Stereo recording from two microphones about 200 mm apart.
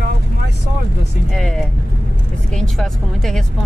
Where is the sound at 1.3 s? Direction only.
5° left (ahead or behind).